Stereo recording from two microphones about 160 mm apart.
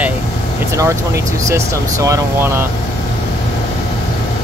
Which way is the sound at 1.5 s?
20° right (ahead or behind).